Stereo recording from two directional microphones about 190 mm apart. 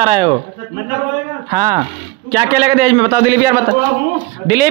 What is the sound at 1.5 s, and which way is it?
A man's voice, 15° right (ahead or behind).